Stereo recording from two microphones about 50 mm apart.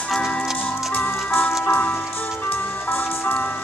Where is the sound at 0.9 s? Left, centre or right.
Left.